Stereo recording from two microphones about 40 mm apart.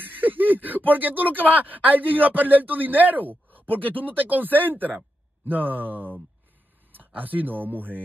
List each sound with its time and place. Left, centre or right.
0.0 s speech: right
7.2 s speech: right